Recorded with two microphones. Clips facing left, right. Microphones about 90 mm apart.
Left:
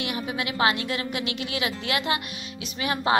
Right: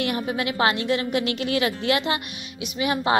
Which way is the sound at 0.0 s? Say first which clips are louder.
Right 4 dB; 40° right (ahead or behind).